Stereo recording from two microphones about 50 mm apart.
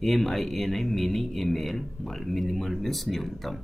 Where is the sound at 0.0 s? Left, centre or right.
Centre.